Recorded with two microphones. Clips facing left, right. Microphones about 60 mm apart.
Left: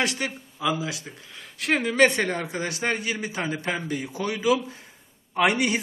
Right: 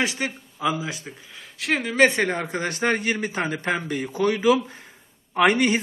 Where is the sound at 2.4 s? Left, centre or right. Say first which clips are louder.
Right 3 dB; right.